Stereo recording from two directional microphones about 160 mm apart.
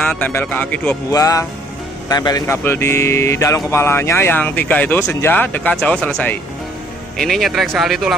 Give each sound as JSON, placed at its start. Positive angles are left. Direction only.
{"t": 0.0, "sound": "speech", "side_deg": 10}
{"t": 1.1, "sound": "speech", "side_deg": 20}